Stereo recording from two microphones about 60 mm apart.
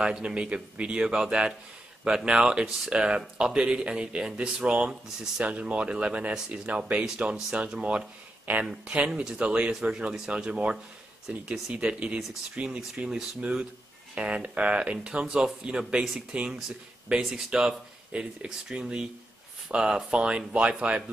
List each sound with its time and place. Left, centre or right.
0.0 s speech: centre